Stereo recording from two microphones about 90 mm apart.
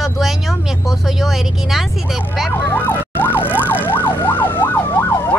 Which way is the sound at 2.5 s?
25° left (ahead or behind).